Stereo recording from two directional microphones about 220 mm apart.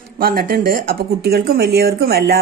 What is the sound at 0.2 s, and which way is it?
A woman's voice, 40° right (ahead or behind).